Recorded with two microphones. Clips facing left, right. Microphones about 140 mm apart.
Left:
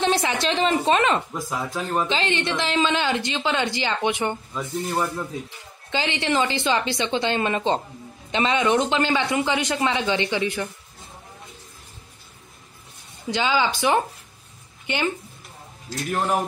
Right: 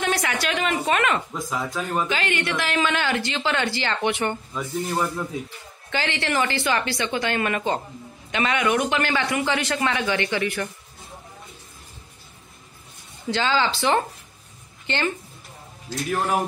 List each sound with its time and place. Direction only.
0.0 s a man's voice: 25° left (ahead or behind)
1.3 s speech: 5° left (ahead or behind)
2.0 s a man's voice: 25° left (ahead or behind)
4.6 s speech: 5° left (ahead or behind)
5.9 s a man's voice: 20° left (ahead or behind)
13.3 s speech: 15° left (ahead or behind)